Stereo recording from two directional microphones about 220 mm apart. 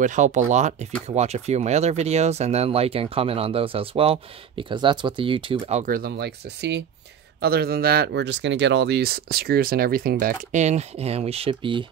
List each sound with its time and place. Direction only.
0.0 s speech: 35° right (ahead or behind)